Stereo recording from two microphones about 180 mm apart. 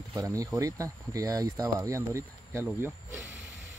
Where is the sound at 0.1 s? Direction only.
20° right (ahead or behind).